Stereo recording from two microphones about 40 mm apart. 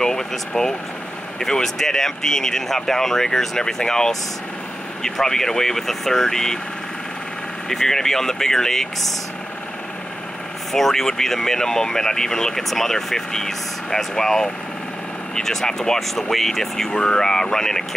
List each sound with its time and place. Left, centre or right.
0.0 s vehicle: centre
1.4 s speech: centre
7.7 s speech: centre
10.7 s speech: centre
16.9 s speech: centre